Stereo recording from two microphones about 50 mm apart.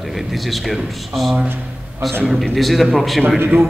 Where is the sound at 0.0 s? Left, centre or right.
Centre.